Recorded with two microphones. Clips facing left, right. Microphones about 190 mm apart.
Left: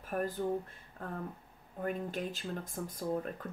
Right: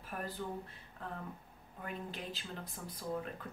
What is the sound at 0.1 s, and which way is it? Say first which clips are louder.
Speech: left 8 dB; 45° left (ahead or behind).